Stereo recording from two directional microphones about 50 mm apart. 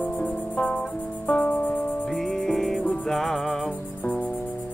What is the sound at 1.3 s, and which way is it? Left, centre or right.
Music, left.